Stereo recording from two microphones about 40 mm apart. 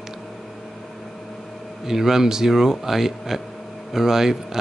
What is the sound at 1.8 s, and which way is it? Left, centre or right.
Speech, centre.